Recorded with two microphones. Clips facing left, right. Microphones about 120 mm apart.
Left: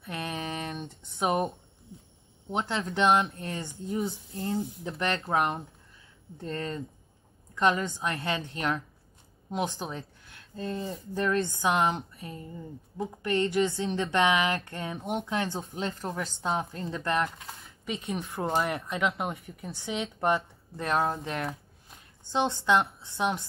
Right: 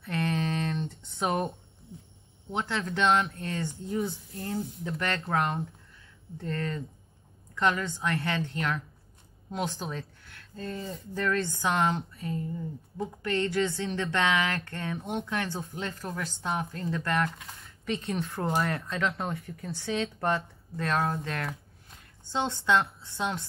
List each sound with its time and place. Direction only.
0.0 s a sound: 15° left (ahead or behind)
2.5 s speech: 20° left (ahead or behind)
17.8 s a woman's voice: 10° left (ahead or behind)